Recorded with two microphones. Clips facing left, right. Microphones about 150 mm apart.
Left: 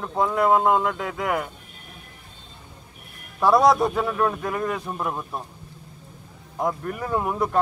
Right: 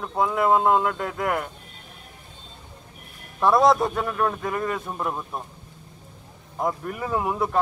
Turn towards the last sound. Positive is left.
turn(degrees=0)  # may be behind; listen again after turning